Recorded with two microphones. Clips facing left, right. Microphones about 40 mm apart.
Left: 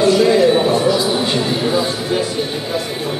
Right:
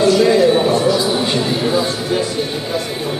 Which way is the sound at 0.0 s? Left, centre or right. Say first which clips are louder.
Even; centre.